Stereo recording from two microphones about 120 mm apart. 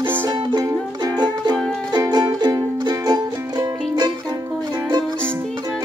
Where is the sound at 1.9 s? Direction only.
35° right (ahead or behind).